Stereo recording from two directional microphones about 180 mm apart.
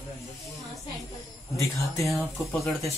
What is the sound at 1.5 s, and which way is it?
Speech, 15° left (ahead or behind).